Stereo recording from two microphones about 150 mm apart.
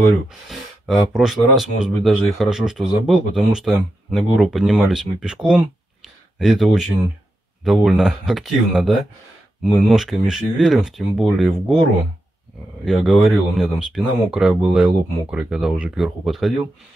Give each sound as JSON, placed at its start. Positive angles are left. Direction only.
{"t": 1.1, "sound": "speech", "side_deg": 0}
{"t": 6.0, "sound": "a sound", "side_deg": 0}
{"t": 7.6, "sound": "speech", "side_deg": 0}
{"t": 12.8, "sound": "speech", "side_deg": 0}